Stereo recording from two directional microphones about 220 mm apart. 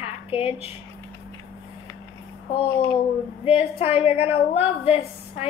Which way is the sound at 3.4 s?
25° left (ahead or behind).